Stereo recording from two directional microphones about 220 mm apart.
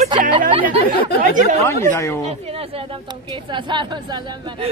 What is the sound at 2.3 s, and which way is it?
A woman's voice, 25° right (ahead or behind).